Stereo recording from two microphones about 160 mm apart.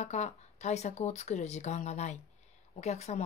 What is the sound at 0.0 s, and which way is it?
Speech, 45° left (ahead or behind).